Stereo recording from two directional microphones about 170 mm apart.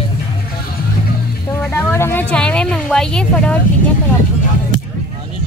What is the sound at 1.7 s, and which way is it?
Speech, 15° left (ahead or behind).